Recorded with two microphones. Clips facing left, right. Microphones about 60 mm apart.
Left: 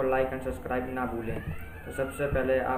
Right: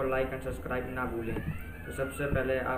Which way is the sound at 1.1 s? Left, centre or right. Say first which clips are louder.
Left 1 dB; left.